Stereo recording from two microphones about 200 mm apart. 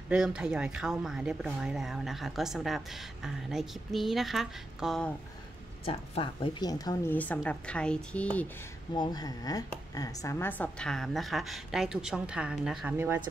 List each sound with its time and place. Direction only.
0.1 s speech: 5° right (ahead or behind)
5.9 s a woman's voice: 25° left (ahead or behind); by 8.5 s 5° left (ahead or behind)
8.9 s speech: 20° left (ahead or behind); by 13.2 s 10° right (ahead or behind)